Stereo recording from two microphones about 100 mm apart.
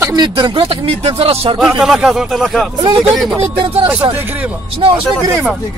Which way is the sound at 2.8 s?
50° right (ahead or behind).